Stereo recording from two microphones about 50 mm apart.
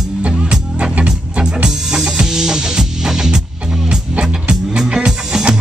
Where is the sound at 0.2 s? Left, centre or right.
Right; by 3.3 s centre.